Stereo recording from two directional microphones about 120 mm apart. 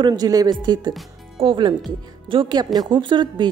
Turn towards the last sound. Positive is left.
turn(degrees=-40)  # may be behind; listen again after turning